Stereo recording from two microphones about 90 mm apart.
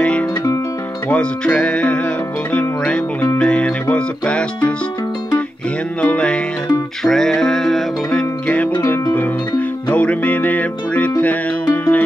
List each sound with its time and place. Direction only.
1.0 s music: 10° left (ahead or behind)
5.9 s music: 15° left (ahead or behind)